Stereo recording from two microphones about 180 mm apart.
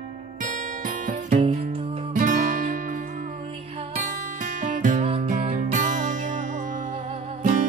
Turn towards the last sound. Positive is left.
turn(degrees=-40)  # may be behind; listen again after turning